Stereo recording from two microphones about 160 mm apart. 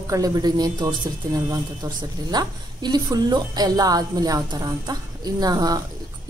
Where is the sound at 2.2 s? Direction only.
25° right (ahead or behind).